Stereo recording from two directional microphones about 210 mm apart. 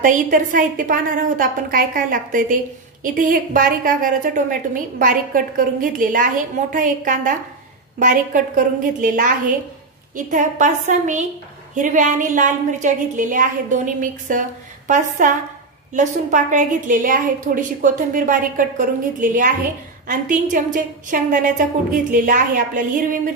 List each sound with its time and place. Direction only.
0.0 s a woman's voice: 40° right (ahead or behind)